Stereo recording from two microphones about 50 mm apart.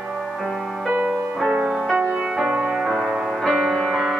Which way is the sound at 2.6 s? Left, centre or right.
Centre.